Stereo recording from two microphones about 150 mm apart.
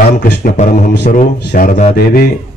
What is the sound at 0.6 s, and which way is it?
Speech, 60° left (ahead or behind).